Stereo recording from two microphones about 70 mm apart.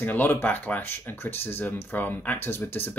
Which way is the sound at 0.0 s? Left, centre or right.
Left.